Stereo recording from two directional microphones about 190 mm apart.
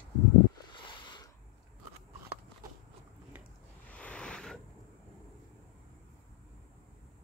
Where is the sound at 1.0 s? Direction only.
25° left (ahead or behind).